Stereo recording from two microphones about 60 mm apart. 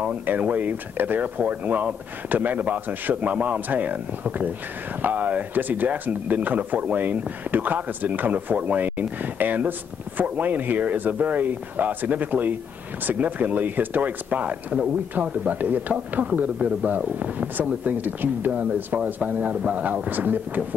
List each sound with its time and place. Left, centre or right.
0.3 s speech: right